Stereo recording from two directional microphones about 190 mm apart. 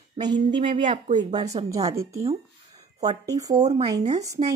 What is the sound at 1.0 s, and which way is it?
Speech, 35° right (ahead or behind).